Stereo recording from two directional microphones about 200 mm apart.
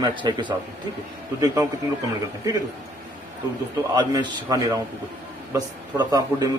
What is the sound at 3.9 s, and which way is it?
A man's voice, 20° right (ahead or behind).